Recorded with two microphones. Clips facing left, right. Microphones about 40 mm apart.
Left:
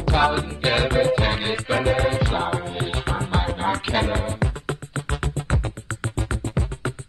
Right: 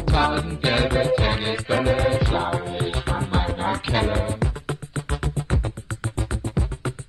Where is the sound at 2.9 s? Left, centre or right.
Left.